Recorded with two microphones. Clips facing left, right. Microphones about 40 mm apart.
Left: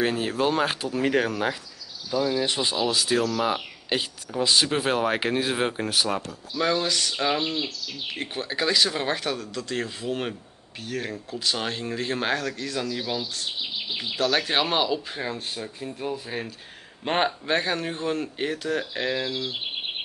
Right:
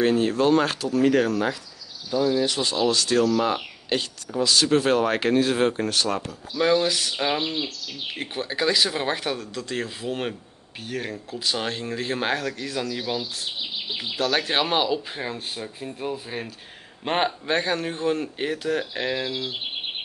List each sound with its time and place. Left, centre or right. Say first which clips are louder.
0.0 s speech: right 4 dB; centre
0.9 s speech: right 5 dB; centre
2.8 s speech: right 4 dB; centre
4.4 s speech: right 1 dB; left
4.6 s speech: right 4 dB; centre
6.2 s speech: right 3 dB; centre